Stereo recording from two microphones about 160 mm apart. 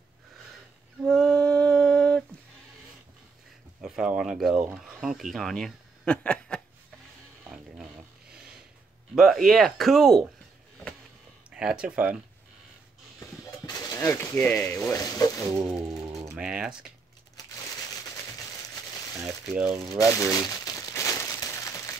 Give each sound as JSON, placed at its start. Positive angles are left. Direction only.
{"t": 1.0, "sound": "a sound", "side_deg": 5}
{"t": 3.8, "sound": "speech", "side_deg": -5}
{"t": 9.1, "sound": "speech", "side_deg": 0}
{"t": 11.5, "sound": "speech", "side_deg": -5}
{"t": 13.9, "sound": "speech", "side_deg": 15}
{"t": 16.3, "sound": "speech", "side_deg": -5}
{"t": 19.2, "sound": "speech", "side_deg": -10}
{"t": 20.0, "sound": "crumpling", "side_deg": 20}